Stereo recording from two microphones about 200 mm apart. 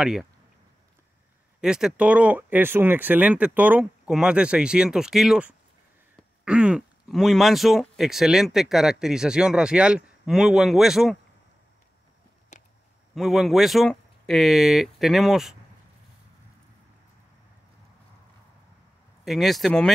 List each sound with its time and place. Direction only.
0.0 s speech: 5° right (ahead or behind)
1.6 s speech: 5° right (ahead or behind)
12.5 s a sound: 40° left (ahead or behind)
13.1 s speech: centre (ahead or behind)
19.2 s speech: centre (ahead or behind)